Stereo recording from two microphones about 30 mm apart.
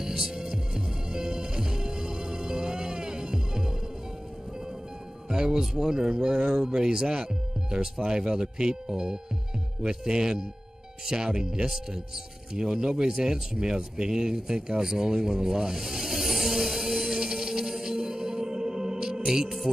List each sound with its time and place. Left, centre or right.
0.0 s music: centre
5.3 s music: right
5.6 s speech: centre
9.8 s speech: right
14.8 s speech: centre
15.2 s a sound: centre
17.2 s music: centre
19.2 s speech: right